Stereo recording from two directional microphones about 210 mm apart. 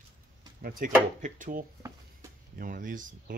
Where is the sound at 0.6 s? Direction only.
45° right (ahead or behind).